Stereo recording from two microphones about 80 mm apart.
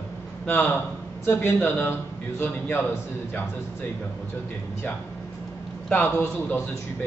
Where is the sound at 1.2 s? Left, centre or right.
Left.